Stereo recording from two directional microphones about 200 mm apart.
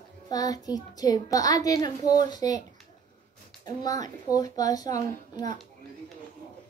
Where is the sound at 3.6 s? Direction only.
20° left (ahead or behind).